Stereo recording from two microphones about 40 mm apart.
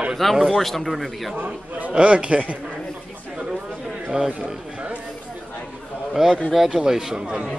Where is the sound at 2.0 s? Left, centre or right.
Right.